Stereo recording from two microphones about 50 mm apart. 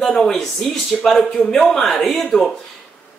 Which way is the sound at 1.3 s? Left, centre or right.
Centre.